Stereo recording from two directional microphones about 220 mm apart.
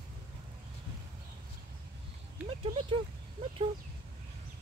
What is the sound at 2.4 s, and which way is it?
Speech, 25° right (ahead or behind).